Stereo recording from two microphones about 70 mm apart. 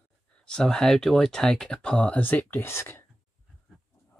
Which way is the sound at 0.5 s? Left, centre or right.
Centre.